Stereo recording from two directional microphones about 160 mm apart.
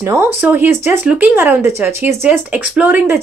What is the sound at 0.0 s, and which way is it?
Speech, 15° right (ahead or behind).